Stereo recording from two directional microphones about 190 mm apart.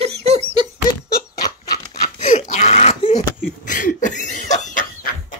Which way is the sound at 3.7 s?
45° left (ahead or behind).